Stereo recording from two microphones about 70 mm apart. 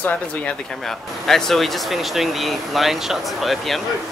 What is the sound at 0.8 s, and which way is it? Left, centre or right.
Speech, centre.